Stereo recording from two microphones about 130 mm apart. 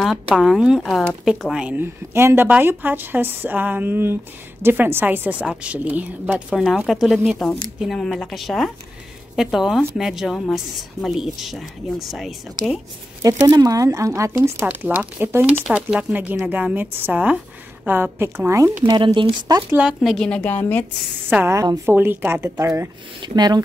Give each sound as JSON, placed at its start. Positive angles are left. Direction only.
{"t": 0.0, "sound": "a woman's voice", "side_deg": 0}
{"t": 6.5, "sound": "a woman's voice", "side_deg": 0}
{"t": 13.2, "sound": "speech", "side_deg": -25}
{"t": 18.9, "sound": "speech", "side_deg": -40}
{"t": 19.8, "sound": "a woman's voice", "side_deg": -5}
{"t": 21.3, "sound": "speech", "side_deg": -20}